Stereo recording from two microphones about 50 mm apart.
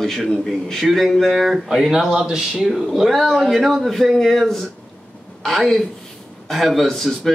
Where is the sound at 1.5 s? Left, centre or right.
Centre.